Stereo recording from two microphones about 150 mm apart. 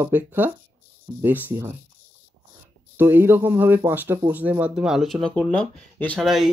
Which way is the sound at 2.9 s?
15° right (ahead or behind).